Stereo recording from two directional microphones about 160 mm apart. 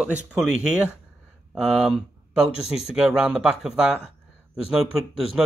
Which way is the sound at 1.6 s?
5° right (ahead or behind).